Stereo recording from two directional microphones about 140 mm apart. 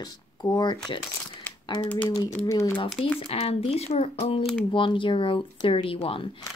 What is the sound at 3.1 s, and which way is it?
Speech, 45° left (ahead or behind).